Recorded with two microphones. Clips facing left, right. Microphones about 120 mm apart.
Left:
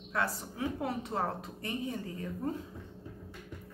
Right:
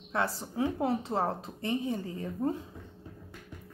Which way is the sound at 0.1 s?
30° right (ahead or behind).